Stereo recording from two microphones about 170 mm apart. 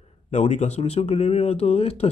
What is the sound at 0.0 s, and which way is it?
Speech, 40° left (ahead or behind).